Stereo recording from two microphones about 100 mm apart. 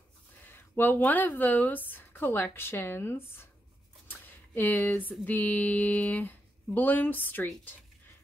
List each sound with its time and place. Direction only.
0.4 s speech: 20° left (ahead or behind)
4.1 s a sound: 20° left (ahead or behind)
5.2 s speech: 15° left (ahead or behind)